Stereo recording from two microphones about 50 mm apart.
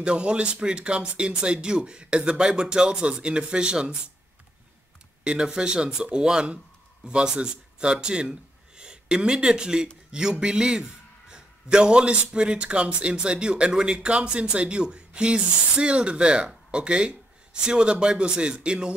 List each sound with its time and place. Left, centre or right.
0.0 s a man's voice: right
5.2 s a man's voice: centre